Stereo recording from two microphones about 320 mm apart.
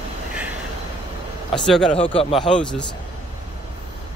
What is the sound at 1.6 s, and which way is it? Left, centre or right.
Speech, centre.